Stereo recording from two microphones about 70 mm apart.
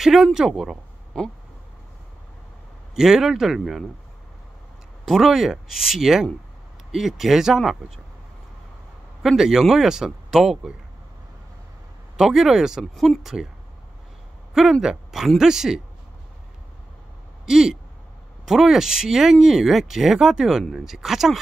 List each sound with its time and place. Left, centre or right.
0.0 s speech: centre
1.1 s a sound: centre
3.0 s speech: centre
5.0 s speech: centre
9.2 s speech: centre
12.2 s speech: centre
14.5 s speech: centre
17.5 s speech: centre